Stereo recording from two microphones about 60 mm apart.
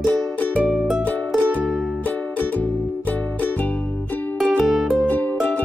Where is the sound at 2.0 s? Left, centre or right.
Left.